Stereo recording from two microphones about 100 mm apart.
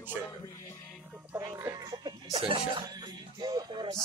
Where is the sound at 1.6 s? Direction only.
35° right (ahead or behind).